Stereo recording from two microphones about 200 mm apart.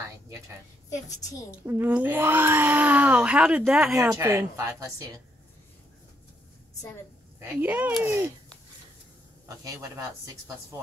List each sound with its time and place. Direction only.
0.8 s a woman's voice: 15° left (ahead or behind)
1.7 s a child's voice: 10° right (ahead or behind)
7.3 s a child's voice: 10° right (ahead or behind)
9.5 s a child's voice: 15° right (ahead or behind)